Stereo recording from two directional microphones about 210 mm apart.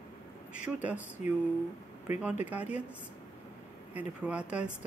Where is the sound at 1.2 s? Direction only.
35° left (ahead or behind).